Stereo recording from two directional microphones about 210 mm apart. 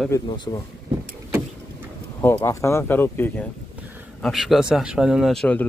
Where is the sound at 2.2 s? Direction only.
10° left (ahead or behind).